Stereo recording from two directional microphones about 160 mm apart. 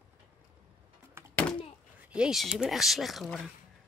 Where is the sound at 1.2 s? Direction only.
15° right (ahead or behind).